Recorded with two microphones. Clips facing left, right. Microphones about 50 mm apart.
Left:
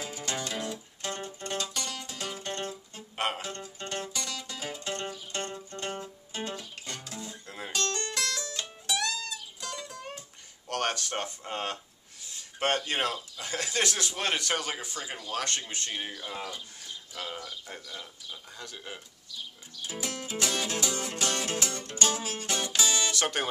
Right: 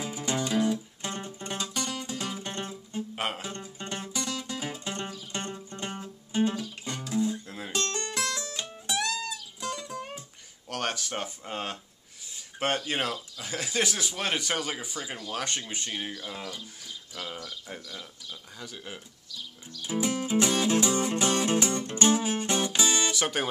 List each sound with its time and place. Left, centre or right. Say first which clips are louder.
0.0 s music: right 4 dB; centre
7.7 s music: right 1 dB; centre
10.7 s a sound: left 1 dB; centre
12.3 s speech: even; centre
19.9 s music: right 9 dB; centre
23.1 s speech: right 1 dB; centre